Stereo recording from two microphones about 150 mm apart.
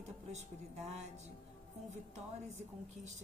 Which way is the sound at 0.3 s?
50° right (ahead or behind).